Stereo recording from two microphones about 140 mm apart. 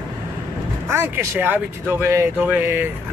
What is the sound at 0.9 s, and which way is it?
Speech, 15° right (ahead or behind).